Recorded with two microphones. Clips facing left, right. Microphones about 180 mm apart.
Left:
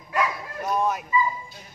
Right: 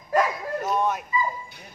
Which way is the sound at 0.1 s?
40° right (ahead or behind).